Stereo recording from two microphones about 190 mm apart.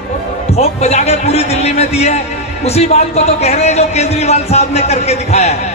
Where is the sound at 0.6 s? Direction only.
35° left (ahead or behind).